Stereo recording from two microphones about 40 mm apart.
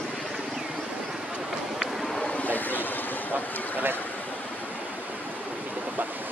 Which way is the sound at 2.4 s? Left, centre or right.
Left.